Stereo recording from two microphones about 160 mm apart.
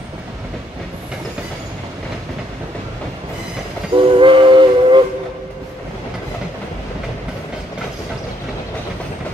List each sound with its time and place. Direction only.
3.9 s train: 30° right (ahead or behind)